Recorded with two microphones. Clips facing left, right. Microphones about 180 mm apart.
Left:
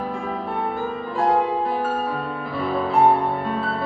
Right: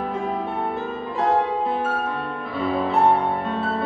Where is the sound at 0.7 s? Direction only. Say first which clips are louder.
Left 1 dB; centre (ahead or behind).